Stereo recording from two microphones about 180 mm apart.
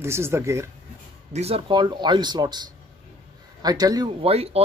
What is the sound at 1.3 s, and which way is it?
A man's voice, 35° right (ahead or behind).